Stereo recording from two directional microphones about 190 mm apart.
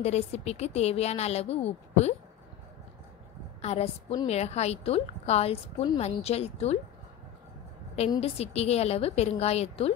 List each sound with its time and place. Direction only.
0.0 s a woman's voice: 35° left (ahead or behind)
3.6 s a woman's voice: 35° left (ahead or behind)
8.2 s a woman's voice: 35° left (ahead or behind)